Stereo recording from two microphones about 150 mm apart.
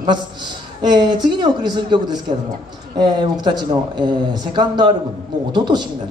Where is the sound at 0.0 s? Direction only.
30° right (ahead or behind).